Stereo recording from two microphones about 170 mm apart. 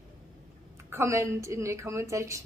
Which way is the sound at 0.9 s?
15° right (ahead or behind).